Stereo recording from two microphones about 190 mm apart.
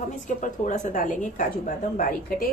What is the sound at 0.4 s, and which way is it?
A woman's voice, 40° left (ahead or behind).